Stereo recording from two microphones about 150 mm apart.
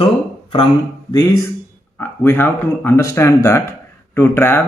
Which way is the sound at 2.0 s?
15° left (ahead or behind).